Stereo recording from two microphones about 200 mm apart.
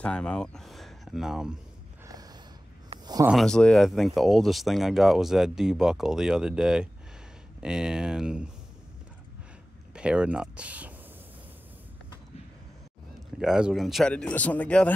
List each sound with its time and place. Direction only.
0.0 s speech: 5° left (ahead or behind)
2.0 s a sound: 20° right (ahead or behind)
3.3 s speech: centre (ahead or behind)
9.9 s speech: 5° right (ahead or behind)
13.4 s speech: 5° right (ahead or behind)